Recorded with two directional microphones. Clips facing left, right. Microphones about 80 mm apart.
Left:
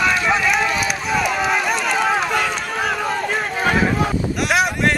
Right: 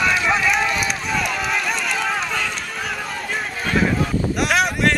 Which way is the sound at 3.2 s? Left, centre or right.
Centre.